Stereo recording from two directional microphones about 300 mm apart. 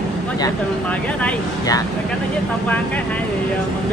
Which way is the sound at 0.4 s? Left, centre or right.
Centre.